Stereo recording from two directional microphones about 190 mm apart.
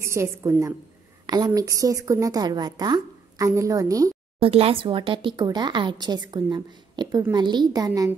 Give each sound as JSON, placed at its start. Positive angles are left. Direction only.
{"t": 0.0, "sound": "a woman's voice", "side_deg": -15}
{"t": 4.4, "sound": "speech", "side_deg": -30}